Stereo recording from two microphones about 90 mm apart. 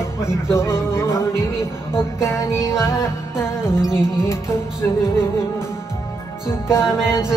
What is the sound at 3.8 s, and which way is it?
Music, 10° right (ahead or behind).